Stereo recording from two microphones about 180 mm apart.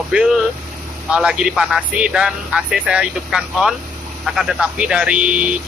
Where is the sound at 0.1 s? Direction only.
5° right (ahead or behind).